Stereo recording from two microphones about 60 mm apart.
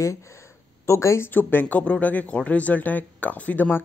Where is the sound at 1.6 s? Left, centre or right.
Left.